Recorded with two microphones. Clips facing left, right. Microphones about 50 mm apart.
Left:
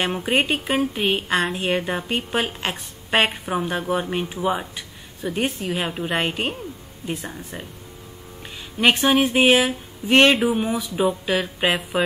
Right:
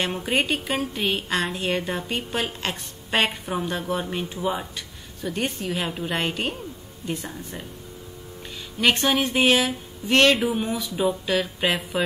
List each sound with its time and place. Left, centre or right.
0.0 s speech: centre
8.9 s speech: centre
10.5 s speech: centre